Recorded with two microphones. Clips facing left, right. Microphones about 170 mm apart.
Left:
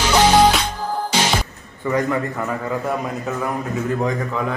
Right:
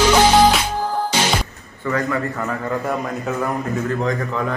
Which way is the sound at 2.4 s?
Centre (ahead or behind).